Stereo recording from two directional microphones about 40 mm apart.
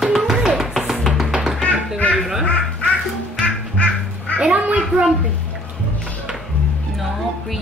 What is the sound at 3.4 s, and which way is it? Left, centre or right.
Music, left.